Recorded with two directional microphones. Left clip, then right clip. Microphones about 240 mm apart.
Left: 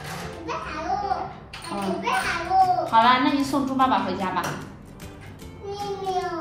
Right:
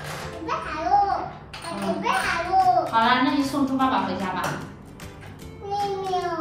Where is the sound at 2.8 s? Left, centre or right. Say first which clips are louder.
Left 2 dB; left.